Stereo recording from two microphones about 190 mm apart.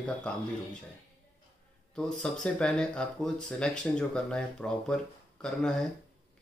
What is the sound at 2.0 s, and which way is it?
Speech, 5° left (ahead or behind).